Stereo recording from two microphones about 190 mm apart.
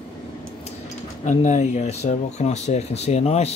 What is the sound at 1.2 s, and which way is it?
Speech, 35° left (ahead or behind).